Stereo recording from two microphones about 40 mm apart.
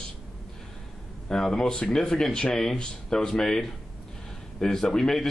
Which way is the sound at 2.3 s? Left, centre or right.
Left.